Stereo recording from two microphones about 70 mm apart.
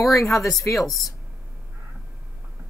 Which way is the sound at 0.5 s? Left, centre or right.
Centre.